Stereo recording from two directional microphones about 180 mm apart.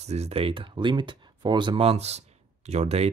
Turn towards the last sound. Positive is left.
turn(degrees=-35)  # may be behind; listen again after turning